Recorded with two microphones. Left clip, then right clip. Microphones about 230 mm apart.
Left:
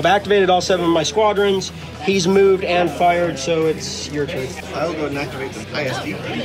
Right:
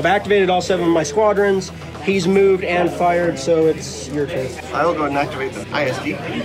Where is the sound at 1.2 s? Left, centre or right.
Left.